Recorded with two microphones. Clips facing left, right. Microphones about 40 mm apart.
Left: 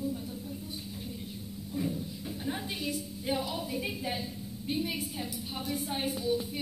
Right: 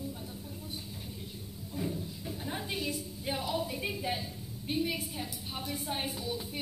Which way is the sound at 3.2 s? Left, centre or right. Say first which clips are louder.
Even; centre.